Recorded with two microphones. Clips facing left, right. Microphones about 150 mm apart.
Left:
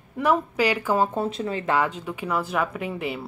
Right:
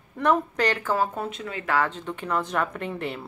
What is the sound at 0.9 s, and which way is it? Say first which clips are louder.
Speech: left 3 dB; 25° left (ahead or behind).